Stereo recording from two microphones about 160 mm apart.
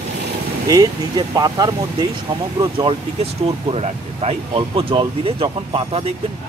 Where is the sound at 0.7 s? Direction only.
25° right (ahead or behind).